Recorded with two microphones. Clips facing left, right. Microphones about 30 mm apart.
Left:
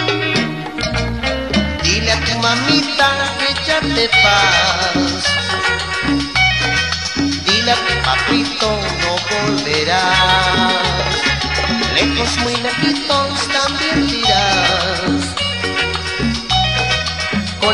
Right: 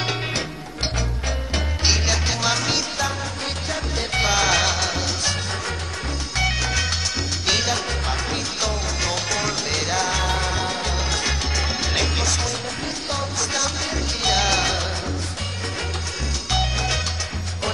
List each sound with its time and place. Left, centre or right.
2.0 s music: left
3.0 s music: left
5.3 s music: left
6.4 s music: left
7.6 s music: left
9.3 s music: left
9.8 s music: left
11.2 s music: left
12.8 s music: left
14.2 s music: left
16.5 s music: left